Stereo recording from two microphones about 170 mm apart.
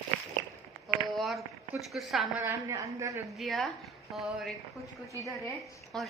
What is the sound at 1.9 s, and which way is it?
Speech, centre (ahead or behind).